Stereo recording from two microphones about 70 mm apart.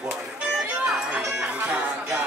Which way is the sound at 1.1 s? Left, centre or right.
Centre.